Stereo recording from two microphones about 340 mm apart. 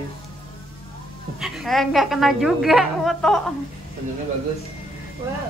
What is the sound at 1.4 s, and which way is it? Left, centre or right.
A woman's voice, centre.